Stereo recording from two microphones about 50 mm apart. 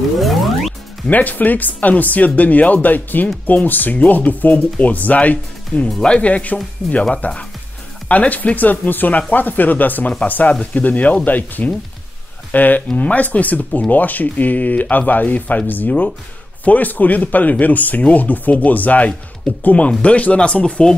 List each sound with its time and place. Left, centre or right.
0.2 s music: centre
1.0 s speech: left
8.1 s speech: left